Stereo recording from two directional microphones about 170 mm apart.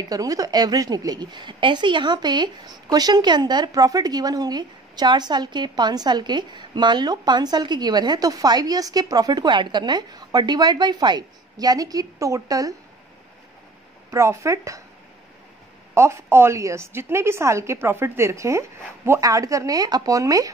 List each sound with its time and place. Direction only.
0.1 s a woman's voice: 20° right (ahead or behind)
14.1 s a woman's voice: 15° right (ahead or behind)
15.9 s a woman's voice: 15° right (ahead or behind)